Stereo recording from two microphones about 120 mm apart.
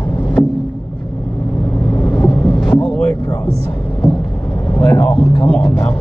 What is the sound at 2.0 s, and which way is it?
Vehicle, 40° left (ahead or behind).